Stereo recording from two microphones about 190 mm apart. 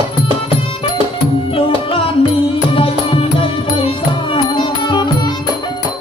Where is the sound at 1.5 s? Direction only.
30° left (ahead or behind).